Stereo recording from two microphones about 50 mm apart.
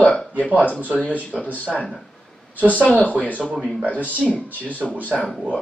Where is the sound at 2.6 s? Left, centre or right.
Left.